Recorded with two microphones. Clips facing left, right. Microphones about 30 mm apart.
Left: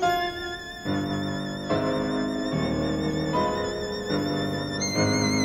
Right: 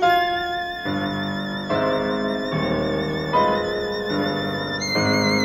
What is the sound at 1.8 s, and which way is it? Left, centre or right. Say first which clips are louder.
Music: right 6 dB; right.